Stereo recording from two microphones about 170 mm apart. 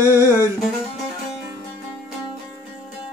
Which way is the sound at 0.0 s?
15° right (ahead or behind).